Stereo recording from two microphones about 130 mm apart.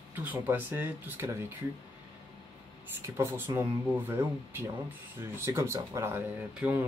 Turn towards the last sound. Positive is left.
turn(degrees=-10)  # may be behind; listen again after turning